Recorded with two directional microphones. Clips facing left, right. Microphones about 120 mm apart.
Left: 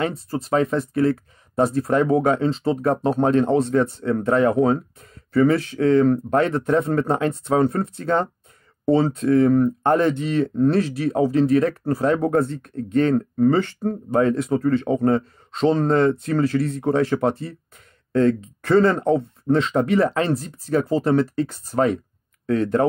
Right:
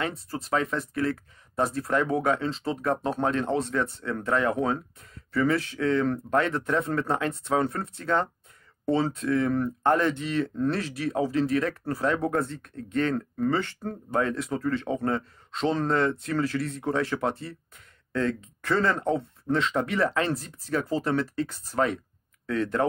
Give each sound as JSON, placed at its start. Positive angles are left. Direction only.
{"t": 0.0, "sound": "speech", "side_deg": 25}
{"t": 1.5, "sound": "speech", "side_deg": 20}
{"t": 8.8, "sound": "speech", "side_deg": 45}
{"t": 16.3, "sound": "speech", "side_deg": 25}